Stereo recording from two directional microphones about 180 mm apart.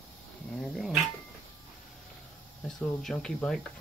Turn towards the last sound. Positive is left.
turn(degrees=5)  # may be behind; listen again after turning